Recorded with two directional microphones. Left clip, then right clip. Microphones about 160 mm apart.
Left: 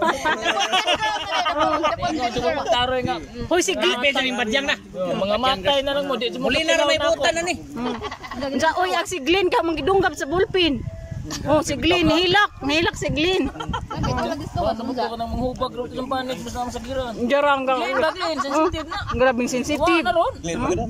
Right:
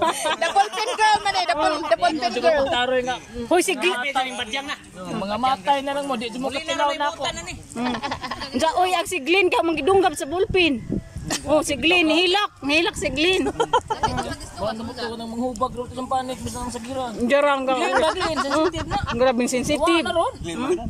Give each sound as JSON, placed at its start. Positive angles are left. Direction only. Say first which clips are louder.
{"t": 0.0, "sound": "a sound", "louder": "left 1 dB", "side_deg": 0}
{"t": 0.5, "sound": "a sound", "louder": "left 1 dB", "side_deg": 85}
{"t": 1.0, "sound": "a sound", "louder": "right 3 dB", "side_deg": -70}
{"t": 1.9, "sound": "a man's voice", "louder": "right 3 dB", "side_deg": -65}
{"t": 2.7, "sound": "speech", "louder": "left 1 dB", "side_deg": 0}
{"t": 3.9, "sound": "a man's voice", "louder": "left 3 dB", "side_deg": 90}
{"t": 5.0, "sound": "speech", "louder": "left 3 dB", "side_deg": 5}
{"t": 6.5, "sound": "a man's voice", "louder": "left 11 dB", "side_deg": 75}
{"t": 7.0, "sound": "speech", "louder": "left 4 dB", "side_deg": 0}
{"t": 7.2, "sound": "speech", "louder": "left 8 dB", "side_deg": 80}
{"t": 8.5, "sound": "speech", "louder": "even", "side_deg": 0}
{"t": 13.6, "sound": "speech", "louder": "right 8 dB", "side_deg": -55}
{"t": 15.6, "sound": "speech", "louder": "even", "side_deg": -5}